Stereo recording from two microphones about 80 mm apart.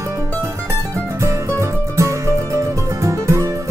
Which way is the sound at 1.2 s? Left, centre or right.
Right.